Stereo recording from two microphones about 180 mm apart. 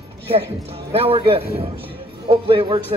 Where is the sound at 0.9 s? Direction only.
30° right (ahead or behind).